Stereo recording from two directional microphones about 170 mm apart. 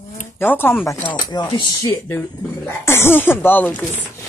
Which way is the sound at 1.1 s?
25° left (ahead or behind).